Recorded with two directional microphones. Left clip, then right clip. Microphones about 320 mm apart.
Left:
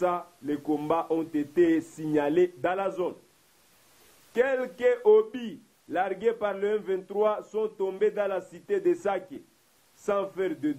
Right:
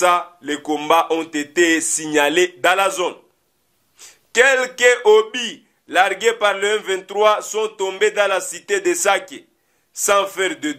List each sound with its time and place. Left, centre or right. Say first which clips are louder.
0.0 s speech: right 12 dB; centre
4.4 s a man's voice: right 12 dB; centre